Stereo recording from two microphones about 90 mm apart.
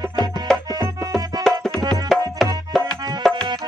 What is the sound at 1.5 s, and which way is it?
Tabla, 5° left (ahead or behind).